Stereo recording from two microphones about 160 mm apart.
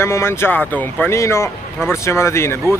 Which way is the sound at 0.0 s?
15° left (ahead or behind).